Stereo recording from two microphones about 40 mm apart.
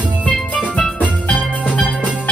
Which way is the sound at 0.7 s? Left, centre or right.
Left.